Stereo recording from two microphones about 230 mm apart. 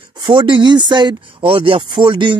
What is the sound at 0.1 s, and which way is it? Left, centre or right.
Speech, centre.